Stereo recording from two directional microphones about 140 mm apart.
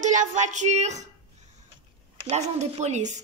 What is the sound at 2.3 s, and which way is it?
Female singing, 55° right (ahead or behind).